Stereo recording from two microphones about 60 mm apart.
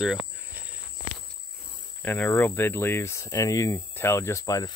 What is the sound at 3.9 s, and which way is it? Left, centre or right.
Speech, left.